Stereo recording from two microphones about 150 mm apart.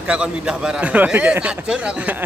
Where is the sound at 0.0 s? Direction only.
5° right (ahead or behind).